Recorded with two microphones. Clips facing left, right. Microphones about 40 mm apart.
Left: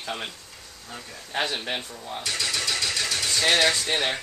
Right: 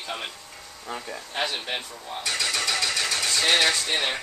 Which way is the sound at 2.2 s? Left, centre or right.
Right.